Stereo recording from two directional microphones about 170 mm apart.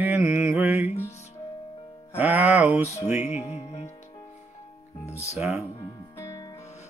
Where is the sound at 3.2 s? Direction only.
40° left (ahead or behind).